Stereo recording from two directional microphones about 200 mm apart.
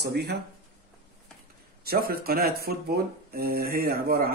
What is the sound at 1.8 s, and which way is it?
Speech, 50° right (ahead or behind).